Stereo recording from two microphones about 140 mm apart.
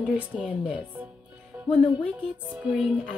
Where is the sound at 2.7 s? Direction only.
5° right (ahead or behind).